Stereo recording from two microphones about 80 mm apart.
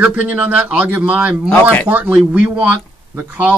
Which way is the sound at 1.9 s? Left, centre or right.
Centre.